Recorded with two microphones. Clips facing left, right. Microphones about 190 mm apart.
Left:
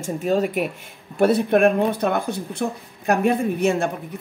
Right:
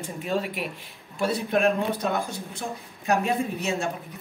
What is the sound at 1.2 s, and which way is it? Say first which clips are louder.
Speech: left 7 dB; 55° left (ahead or behind).